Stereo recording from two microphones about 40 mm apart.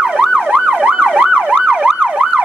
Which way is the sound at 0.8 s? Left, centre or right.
Right.